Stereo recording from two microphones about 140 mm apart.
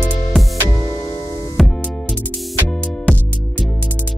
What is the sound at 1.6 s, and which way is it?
Music, centre (ahead or behind).